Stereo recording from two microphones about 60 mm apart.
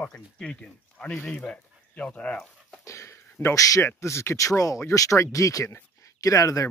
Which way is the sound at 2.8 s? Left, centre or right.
Left.